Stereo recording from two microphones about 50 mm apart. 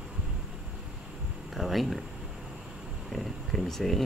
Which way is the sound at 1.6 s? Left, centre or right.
Centre.